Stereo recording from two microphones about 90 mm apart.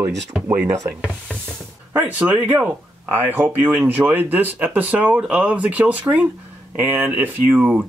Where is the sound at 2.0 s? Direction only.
20° right (ahead or behind).